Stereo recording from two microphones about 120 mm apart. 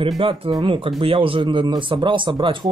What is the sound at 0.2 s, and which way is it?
Speech, 45° right (ahead or behind).